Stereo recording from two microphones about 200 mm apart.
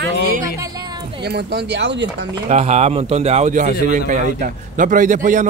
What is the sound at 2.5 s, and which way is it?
A man's voice, 30° right (ahead or behind).